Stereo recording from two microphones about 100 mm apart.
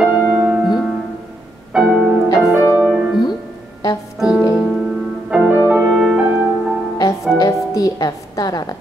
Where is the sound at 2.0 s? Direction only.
5° right (ahead or behind).